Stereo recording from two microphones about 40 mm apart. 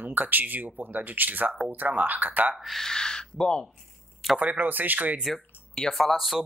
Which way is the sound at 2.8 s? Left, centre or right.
Centre.